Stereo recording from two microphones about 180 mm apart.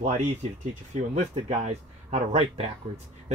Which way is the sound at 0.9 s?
35° right (ahead or behind).